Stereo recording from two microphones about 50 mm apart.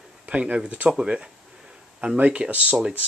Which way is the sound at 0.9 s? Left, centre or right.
Centre.